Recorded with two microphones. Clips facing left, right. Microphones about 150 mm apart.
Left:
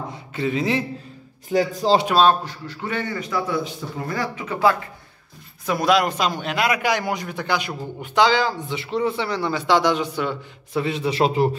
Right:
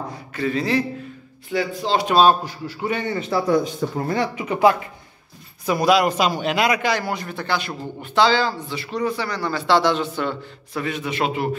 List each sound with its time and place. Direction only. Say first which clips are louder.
0.3 s a man's voice: right 1 dB; 20° left (ahead or behind)
1.5 s speech: left 4 dB; 40° left (ahead or behind)
2.2 s a man's voice: right 1 dB; 10° right (ahead or behind); by 3.7 s 40° right (ahead or behind)
4.4 s speech: right 2 dB; 15° right (ahead or behind)
5.7 s a man's voice: right 2 dB; centre (ahead or behind)
10.8 s speech: left 3 dB; 30° left (ahead or behind)